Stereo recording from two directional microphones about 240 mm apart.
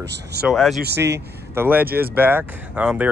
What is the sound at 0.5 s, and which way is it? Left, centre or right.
Speech, centre.